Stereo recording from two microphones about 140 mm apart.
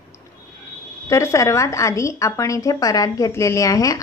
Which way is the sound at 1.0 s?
20° left (ahead or behind).